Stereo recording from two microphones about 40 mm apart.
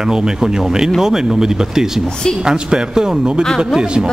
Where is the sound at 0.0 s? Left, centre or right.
Centre.